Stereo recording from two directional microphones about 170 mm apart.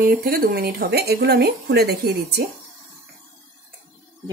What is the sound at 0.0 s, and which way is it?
Speech, 60° right (ahead or behind).